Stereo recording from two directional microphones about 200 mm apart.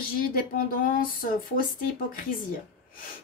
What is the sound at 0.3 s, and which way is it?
Speech, 45° left (ahead or behind).